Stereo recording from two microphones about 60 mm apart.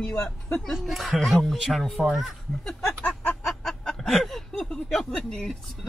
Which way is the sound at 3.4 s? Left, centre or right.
Centre.